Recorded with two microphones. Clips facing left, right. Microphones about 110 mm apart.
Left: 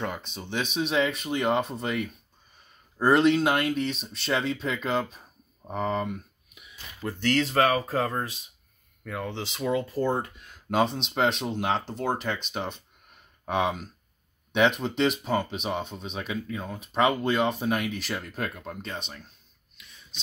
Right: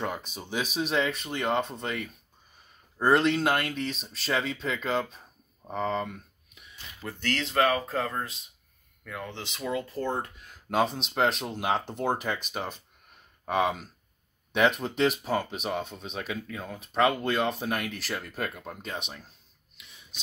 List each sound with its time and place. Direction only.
0.0 s speech: 10° right (ahead or behind)
9.1 s speech: 10° left (ahead or behind); by 19.2 s 10° right (ahead or behind)
19.8 s a sound: 15° right (ahead or behind)